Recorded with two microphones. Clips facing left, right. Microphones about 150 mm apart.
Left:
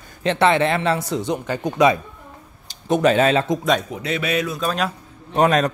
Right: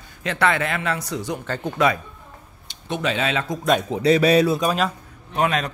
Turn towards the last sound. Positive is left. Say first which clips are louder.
# left 5 dB
turn(degrees=40)  # may be behind; listen again after turning